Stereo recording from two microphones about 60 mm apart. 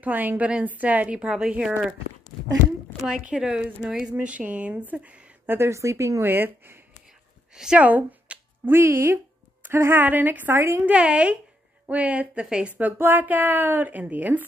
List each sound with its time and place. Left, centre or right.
0.0 s a woman's voice: right; by 1.5 s centre
3.1 s a woman's voice: centre
5.5 s speech: right
6.2 s a woman's voice: right
7.5 s a woman's voice: centre
7.8 s speech: right
8.6 s speech: right
9.6 s music: right
9.9 s a woman's voice: right
10.6 s speech: right
10.9 s a woman's voice: centre
12.6 s a woman's voice: right
12.9 s a woman's voice: right